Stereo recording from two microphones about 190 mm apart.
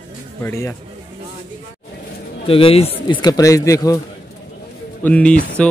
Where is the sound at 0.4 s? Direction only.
15° left (ahead or behind).